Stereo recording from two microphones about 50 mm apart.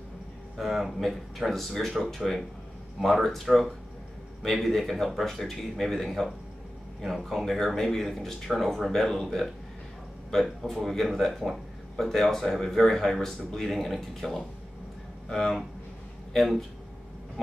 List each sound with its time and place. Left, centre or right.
0.6 s speech: centre